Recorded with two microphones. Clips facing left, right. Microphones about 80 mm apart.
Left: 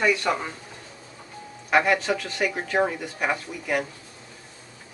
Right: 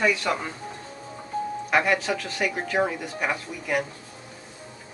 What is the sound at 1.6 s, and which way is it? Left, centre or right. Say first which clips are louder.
Speech: left 3 dB; centre.